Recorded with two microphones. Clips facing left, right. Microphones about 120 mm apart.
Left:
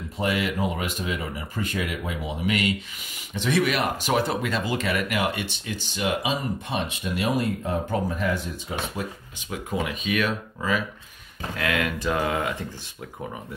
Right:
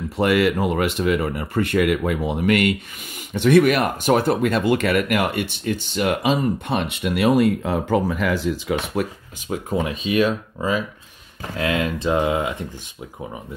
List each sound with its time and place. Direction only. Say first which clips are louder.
0.2 s speech: right 7 dB; 70° right (ahead or behind)
9.5 s speech: right 5 dB; 35° right (ahead or behind); by 12.6 s 20° right (ahead or behind)